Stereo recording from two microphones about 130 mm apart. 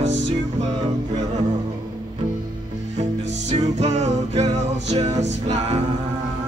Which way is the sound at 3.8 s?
60° right (ahead or behind).